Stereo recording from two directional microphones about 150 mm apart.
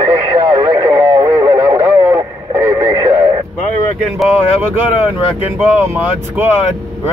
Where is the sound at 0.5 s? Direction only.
30° right (ahead or behind).